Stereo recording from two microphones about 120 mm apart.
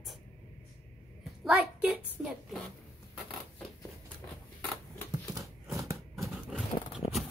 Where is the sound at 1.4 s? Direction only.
5° right (ahead or behind).